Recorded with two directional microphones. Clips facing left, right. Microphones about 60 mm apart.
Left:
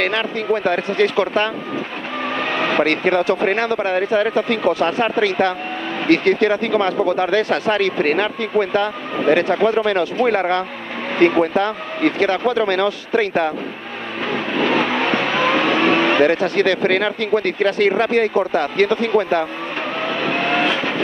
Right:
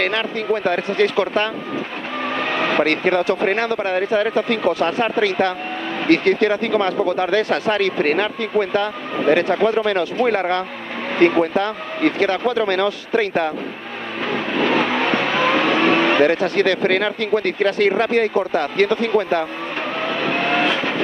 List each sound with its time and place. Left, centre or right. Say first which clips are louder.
0.0 s speech: left 1 dB; left
2.2 s vehicle: even; left
2.8 s speech: left 1 dB; left
9.1 s speech: even; left
14.2 s vehicle: even; left
17.6 s speech: even; left
20.0 s vehicle: even; left